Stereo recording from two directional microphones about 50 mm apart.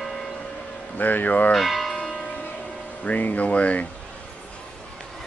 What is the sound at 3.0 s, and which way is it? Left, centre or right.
Speech, left.